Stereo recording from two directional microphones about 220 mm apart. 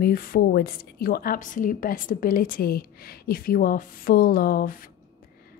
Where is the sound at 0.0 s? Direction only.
40° left (ahead or behind).